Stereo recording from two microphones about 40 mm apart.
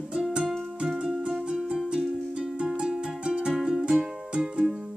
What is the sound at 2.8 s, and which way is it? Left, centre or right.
Music, centre.